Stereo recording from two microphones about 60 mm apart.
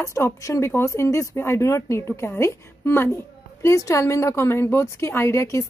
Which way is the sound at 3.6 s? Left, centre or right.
Left.